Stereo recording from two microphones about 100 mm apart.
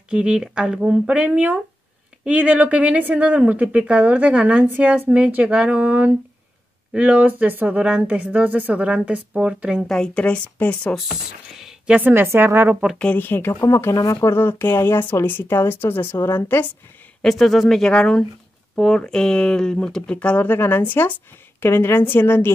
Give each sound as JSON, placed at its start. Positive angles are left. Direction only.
{"t": 0.1, "sound": "speech", "side_deg": -10}
{"t": 9.8, "sound": "speech", "side_deg": 5}
{"t": 11.5, "sound": "a sound", "side_deg": -5}
{"t": 12.1, "sound": "speech", "side_deg": -20}
{"t": 13.0, "sound": "speech", "side_deg": 20}
{"t": 17.2, "sound": "speech", "side_deg": 0}